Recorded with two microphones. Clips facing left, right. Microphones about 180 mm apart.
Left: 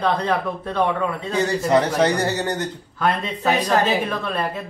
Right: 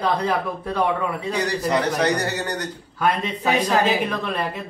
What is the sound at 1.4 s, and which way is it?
A man's voice, 25° left (ahead or behind).